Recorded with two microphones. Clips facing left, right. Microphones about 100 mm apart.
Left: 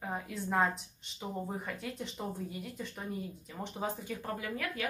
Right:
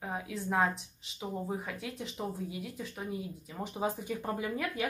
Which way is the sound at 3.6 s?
15° right (ahead or behind).